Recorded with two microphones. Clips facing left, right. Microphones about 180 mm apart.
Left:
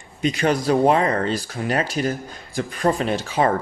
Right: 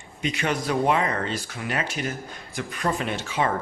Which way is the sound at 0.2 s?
40° left (ahead or behind).